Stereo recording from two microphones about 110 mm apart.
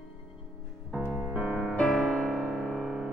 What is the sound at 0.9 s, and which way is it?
Music, 10° right (ahead or behind).